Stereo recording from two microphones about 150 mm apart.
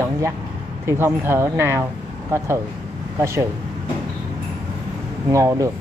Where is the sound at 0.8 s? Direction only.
15° right (ahead or behind).